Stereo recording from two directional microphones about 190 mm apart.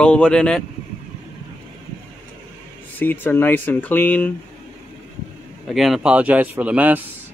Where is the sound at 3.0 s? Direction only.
10° left (ahead or behind).